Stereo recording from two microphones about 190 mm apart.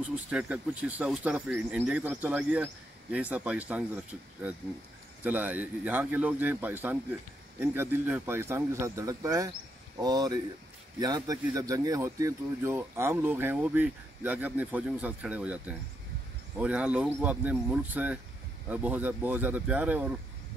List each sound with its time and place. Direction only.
0.3 s speech: 5° right (ahead or behind)